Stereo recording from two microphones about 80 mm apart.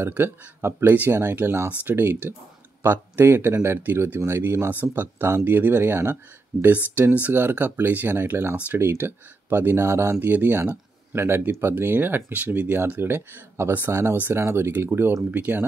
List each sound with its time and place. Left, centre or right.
0.1 s speech: right